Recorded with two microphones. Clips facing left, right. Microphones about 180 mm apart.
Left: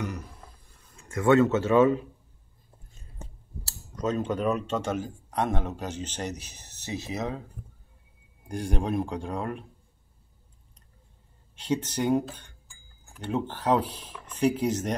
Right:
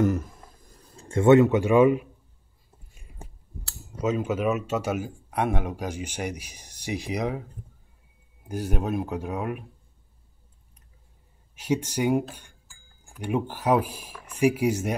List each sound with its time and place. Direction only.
0.0 s a sound: 45° right (ahead or behind); by 2.0 s 10° right (ahead or behind)
2.9 s biting: 10° right (ahead or behind)
4.0 s speech: 5° right (ahead or behind)
8.5 s speech: 5° right (ahead or behind)
11.5 s speech: 10° right (ahead or behind)